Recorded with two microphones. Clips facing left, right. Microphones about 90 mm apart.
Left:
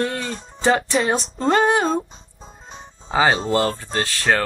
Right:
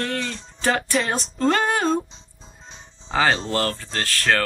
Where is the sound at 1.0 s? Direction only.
Centre (ahead or behind).